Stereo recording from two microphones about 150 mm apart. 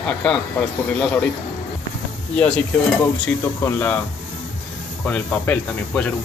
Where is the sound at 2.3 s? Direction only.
10° left (ahead or behind).